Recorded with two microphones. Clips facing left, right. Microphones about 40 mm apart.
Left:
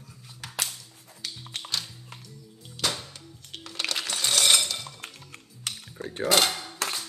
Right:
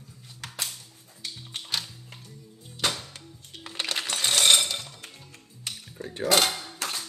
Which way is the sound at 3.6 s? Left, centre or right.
Right.